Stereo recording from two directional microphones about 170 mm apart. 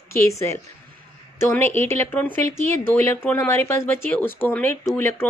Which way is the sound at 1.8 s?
10° left (ahead or behind).